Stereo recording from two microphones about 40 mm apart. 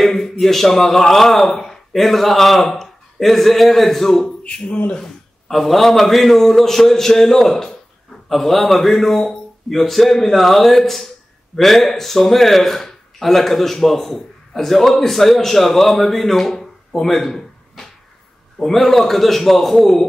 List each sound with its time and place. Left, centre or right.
0.0 s a man's voice: centre
4.5 s speech: left
5.5 s a man's voice: centre